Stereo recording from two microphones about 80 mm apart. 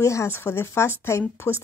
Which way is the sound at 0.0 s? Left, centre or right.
Left.